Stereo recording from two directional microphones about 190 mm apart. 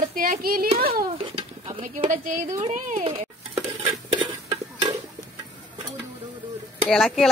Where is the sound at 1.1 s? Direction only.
30° right (ahead or behind).